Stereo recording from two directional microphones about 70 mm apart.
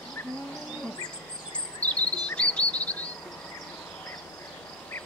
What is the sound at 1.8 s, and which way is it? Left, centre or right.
Cricket, centre.